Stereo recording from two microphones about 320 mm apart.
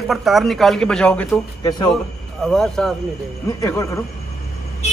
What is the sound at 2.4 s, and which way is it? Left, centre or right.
A man's voice, centre.